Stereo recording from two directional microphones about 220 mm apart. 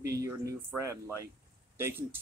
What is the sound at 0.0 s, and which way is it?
Speech, 15° right (ahead or behind).